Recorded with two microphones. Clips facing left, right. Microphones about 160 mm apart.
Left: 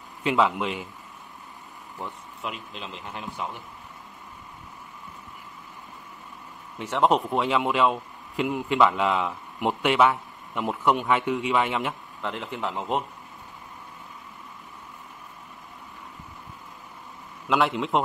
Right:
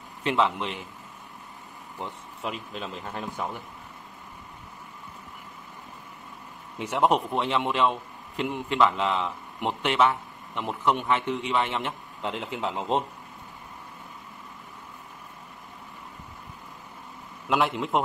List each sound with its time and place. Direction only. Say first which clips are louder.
0.2 s a man's voice: left 2 dB; 5° left (ahead or behind)
2.4 s a man's voice: right 2 dB; 40° right (ahead or behind)
6.8 s speech: left 1 dB; 10° right (ahead or behind)
7.1 s a man's voice: left 3 dB; centre (ahead or behind)
12.2 s speech: right 1 dB; 20° right (ahead or behind)
17.5 s a man's voice: left 1 dB; centre (ahead or behind)